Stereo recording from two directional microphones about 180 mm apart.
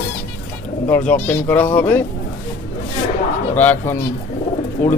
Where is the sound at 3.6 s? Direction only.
10° left (ahead or behind).